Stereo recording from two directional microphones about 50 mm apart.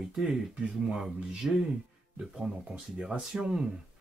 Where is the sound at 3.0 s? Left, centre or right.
Centre.